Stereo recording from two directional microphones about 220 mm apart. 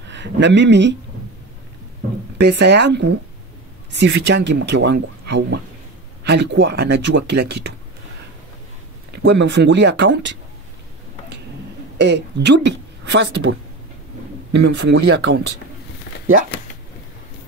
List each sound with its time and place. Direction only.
0.1 s speech: 55° right (ahead or behind)
2.3 s speech: 50° right (ahead or behind)
9.3 s speech: 50° right (ahead or behind)
12.0 s a woman's voice: 50° right (ahead or behind)